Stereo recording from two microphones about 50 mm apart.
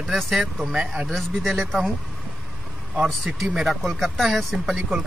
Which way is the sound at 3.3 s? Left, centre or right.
Right.